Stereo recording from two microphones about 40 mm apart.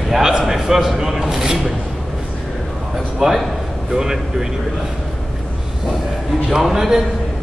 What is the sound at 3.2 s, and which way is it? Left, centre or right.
A man's voice, centre.